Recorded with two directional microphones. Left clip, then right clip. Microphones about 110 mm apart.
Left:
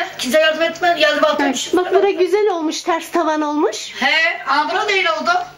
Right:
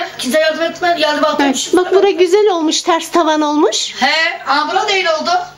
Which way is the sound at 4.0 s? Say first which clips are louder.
Even; 50° right (ahead or behind).